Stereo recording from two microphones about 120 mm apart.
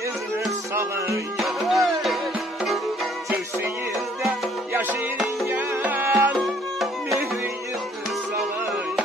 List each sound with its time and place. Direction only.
0.7 s music: 20° right (ahead or behind)
1.4 s music: centre (ahead or behind)
5.5 s tabla: 15° right (ahead or behind)
6.1 s music: centre (ahead or behind)